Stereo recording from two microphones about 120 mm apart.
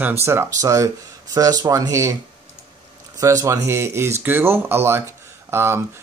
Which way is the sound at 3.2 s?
25° right (ahead or behind).